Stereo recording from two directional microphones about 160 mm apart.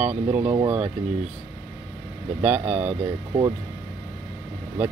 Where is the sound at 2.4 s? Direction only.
10° right (ahead or behind).